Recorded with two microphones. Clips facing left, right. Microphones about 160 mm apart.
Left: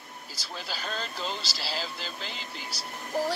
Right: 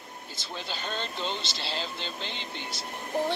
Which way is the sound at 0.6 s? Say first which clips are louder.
Right 1 dB; 5° left (ahead or behind).